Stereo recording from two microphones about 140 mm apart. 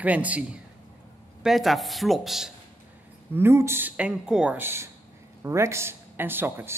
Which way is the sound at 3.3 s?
15° right (ahead or behind).